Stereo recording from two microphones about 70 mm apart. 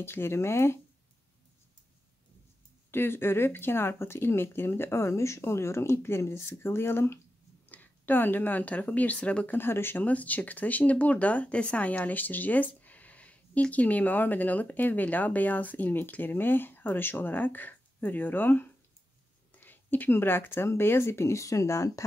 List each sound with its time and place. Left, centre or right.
0.0 s speech: left
2.9 s speech: left
7.7 s a woman's voice: left
9.6 s speech: left
10.0 s speech: left